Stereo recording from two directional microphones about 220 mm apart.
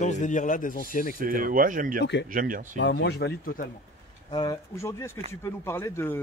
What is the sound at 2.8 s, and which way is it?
Speech, 50° left (ahead or behind).